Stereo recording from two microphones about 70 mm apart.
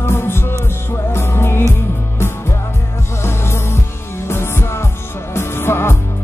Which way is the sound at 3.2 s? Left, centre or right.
Left.